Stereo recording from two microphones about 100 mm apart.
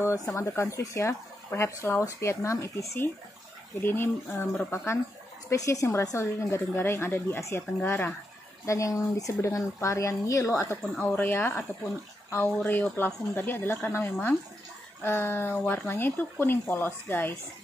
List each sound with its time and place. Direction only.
0.0 s speech: 30° left (ahead or behind)
5.5 s speech: 30° left (ahead or behind)
10.8 s speech: 5° left (ahead or behind)
11.1 s speech: 20° left (ahead or behind)
12.6 s speech: 20° left (ahead or behind)